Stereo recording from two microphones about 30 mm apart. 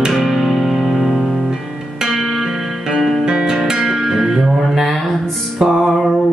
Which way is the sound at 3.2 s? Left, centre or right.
Right.